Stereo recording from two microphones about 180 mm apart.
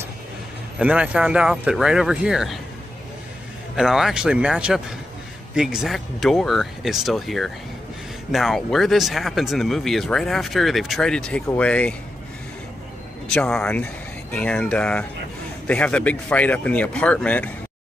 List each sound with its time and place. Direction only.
0.7 s speech: 5° right (ahead or behind)
3.7 s a man's voice: centre (ahead or behind)
13.3 s a man's voice: 5° left (ahead or behind)